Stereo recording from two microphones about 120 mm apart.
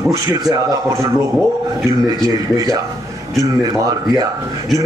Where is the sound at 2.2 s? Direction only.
30° right (ahead or behind).